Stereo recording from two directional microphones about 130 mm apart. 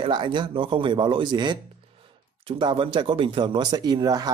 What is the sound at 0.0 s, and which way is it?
Speech, 35° right (ahead or behind).